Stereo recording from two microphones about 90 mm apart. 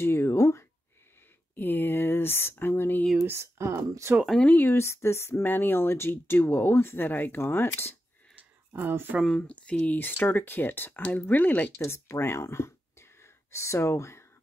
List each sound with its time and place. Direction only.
0.0 s a sound: 30° left (ahead or behind)
1.5 s speech: 20° left (ahead or behind)
3.2 s speech: 30° right (ahead or behind)
4.5 s speech: 25° left (ahead or behind)
8.7 s speech: 20° right (ahead or behind)
9.3 s speech: 10° left (ahead or behind)
11.8 s speech: 30° left (ahead or behind)